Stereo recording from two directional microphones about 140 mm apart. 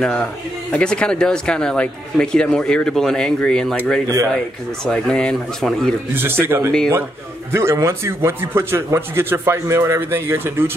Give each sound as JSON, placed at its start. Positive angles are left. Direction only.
{"t": 0.0, "sound": "speech", "side_deg": 10}
{"t": 6.1, "sound": "a man's voice", "side_deg": -15}